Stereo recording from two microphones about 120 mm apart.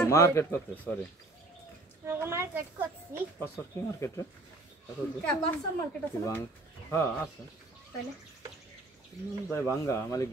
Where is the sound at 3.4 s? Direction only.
20° left (ahead or behind).